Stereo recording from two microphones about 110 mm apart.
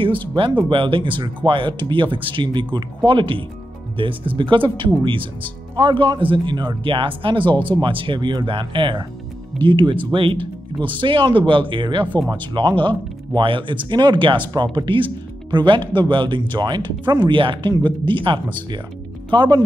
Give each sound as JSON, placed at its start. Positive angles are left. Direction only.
{"t": 0.7, "sound": "speech", "side_deg": -50}